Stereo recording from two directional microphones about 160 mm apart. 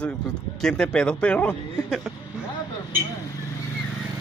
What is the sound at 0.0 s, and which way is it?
Speech, 5° left (ahead or behind).